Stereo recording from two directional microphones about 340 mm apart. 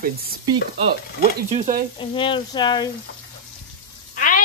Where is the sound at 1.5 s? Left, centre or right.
Right.